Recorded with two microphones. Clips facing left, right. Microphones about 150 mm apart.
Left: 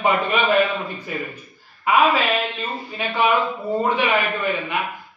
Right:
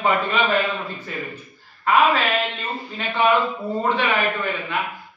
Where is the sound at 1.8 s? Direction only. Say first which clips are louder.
Even; 10° left (ahead or behind).